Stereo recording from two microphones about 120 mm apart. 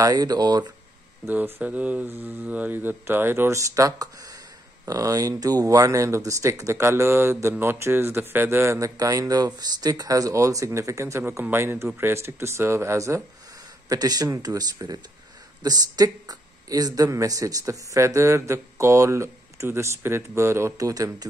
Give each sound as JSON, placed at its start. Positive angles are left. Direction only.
{"t": 0.0, "sound": "speech", "side_deg": -30}
{"t": 1.2, "sound": "speech", "side_deg": -15}